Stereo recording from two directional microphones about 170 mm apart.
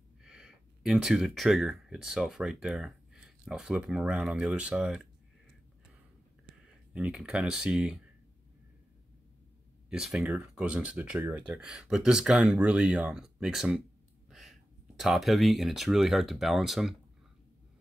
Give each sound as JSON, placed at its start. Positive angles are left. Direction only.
{"t": 0.2, "sound": "speech", "side_deg": -5}
{"t": 6.9, "sound": "speech", "side_deg": -5}
{"t": 9.8, "sound": "speech", "side_deg": -5}